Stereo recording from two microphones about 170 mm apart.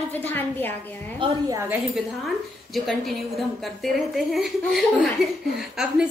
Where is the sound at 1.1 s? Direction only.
30° right (ahead or behind).